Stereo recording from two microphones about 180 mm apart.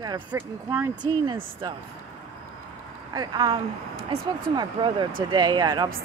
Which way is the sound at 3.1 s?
25° right (ahead or behind).